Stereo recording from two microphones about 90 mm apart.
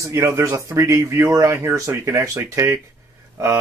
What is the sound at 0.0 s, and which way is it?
Speech, 30° right (ahead or behind).